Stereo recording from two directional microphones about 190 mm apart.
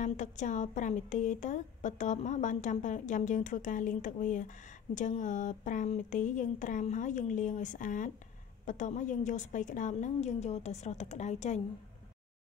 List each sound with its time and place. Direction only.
0.0 s a woman's voice: 40° left (ahead or behind)